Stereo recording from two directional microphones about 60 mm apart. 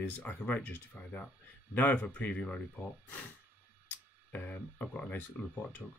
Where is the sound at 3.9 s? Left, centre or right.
Left.